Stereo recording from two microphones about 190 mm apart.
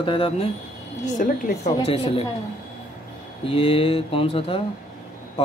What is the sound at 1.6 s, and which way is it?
Speech, 25° left (ahead or behind).